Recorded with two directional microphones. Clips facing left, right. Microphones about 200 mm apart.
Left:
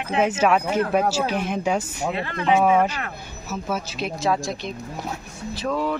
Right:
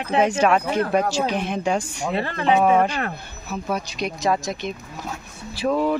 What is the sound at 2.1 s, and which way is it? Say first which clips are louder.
Speech: right 2 dB; 35° right (ahead or behind).